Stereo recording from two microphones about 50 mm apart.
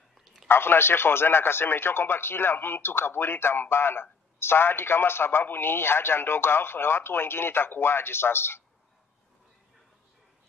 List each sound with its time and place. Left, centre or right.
0.5 s a man's voice: left